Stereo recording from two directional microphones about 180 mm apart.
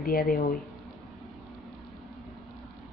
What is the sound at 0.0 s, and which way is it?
Speech, 55° left (ahead or behind).